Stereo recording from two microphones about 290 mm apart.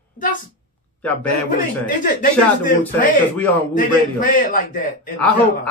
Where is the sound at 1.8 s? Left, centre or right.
Left.